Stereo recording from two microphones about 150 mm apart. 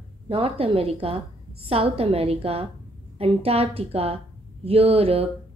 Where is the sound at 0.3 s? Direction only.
40° right (ahead or behind).